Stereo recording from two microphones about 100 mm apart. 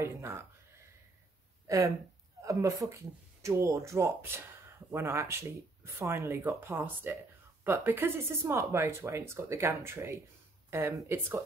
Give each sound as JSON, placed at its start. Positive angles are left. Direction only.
{"t": 0.0, "sound": "speech", "side_deg": -25}
{"t": 1.7, "sound": "speech", "side_deg": -35}